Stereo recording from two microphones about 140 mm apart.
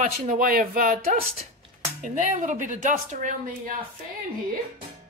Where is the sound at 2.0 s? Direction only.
65° right (ahead or behind).